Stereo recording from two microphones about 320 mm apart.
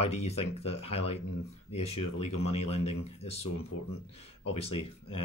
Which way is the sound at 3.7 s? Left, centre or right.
Left.